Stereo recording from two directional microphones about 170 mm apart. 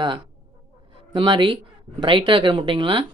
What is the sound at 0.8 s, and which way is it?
Speech, 30° right (ahead or behind).